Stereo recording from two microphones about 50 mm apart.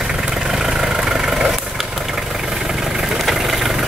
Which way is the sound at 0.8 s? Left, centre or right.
Centre.